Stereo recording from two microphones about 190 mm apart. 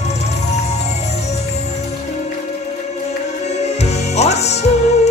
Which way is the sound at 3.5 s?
35° left (ahead or behind).